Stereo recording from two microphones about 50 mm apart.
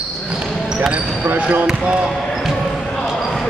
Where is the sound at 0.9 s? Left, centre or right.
Right.